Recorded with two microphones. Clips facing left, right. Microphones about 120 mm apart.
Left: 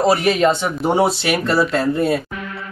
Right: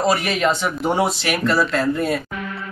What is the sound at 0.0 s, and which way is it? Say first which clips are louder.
Speech: left 4 dB; 25° left (ahead or behind).